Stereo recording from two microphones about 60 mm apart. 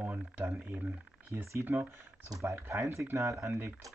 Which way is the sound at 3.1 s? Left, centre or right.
Right.